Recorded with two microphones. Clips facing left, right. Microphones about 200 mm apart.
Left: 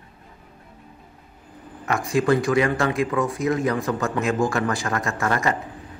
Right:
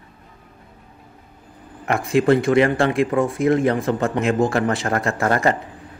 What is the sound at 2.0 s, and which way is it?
A man's voice, 25° right (ahead or behind).